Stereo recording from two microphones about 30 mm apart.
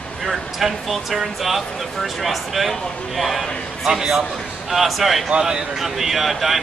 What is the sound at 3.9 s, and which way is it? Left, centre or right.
Speech, centre.